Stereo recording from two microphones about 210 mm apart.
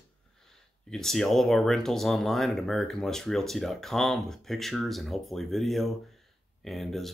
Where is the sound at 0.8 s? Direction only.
Centre (ahead or behind).